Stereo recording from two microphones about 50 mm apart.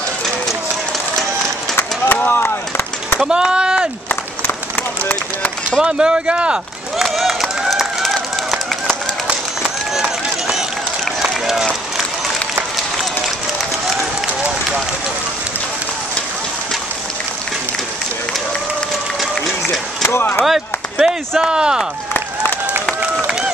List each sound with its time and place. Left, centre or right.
2.1 s a sound: left
3.2 s a sound: centre
5.0 s run: left
5.8 s speech: centre
7.0 s run: centre
11.4 s run: centre
20.1 s speech: left
20.4 s run: centre
21.4 s speech: centre